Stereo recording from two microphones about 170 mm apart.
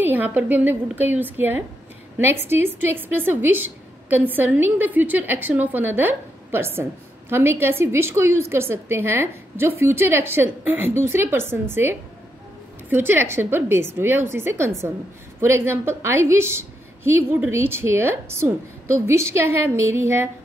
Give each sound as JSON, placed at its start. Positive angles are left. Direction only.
{"t": 0.0, "sound": "a woman's voice", "side_deg": -10}